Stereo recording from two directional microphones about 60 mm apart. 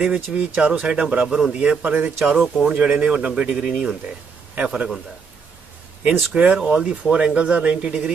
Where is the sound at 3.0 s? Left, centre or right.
Centre.